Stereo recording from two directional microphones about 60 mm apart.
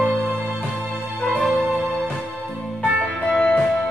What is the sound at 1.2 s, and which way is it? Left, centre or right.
Music, left.